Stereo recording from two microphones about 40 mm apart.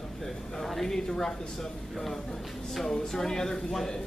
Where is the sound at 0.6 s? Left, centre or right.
Centre.